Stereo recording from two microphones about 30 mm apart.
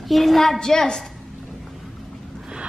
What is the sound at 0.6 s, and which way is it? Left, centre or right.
Speech, left.